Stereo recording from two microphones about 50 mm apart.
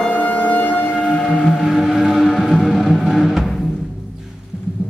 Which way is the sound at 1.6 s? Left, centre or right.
Centre.